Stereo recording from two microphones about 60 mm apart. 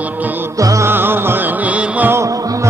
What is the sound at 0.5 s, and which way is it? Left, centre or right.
Music, right.